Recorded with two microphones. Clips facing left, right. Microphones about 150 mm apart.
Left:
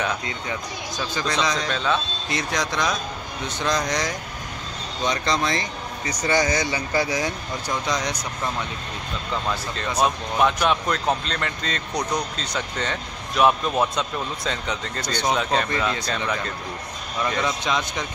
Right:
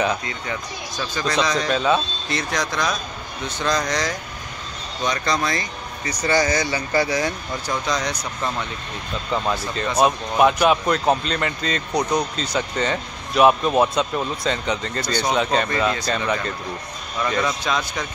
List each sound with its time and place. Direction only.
0.5 s speech: 20° left (ahead or behind)
1.7 s a man's voice: 10° right (ahead or behind)
2.2 s speech: 15° left (ahead or behind)
9.3 s speech: 5° right (ahead or behind)
17.4 s speech: 20° left (ahead or behind)